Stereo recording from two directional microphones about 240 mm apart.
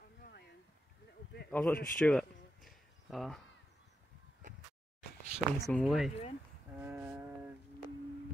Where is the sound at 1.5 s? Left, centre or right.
Centre.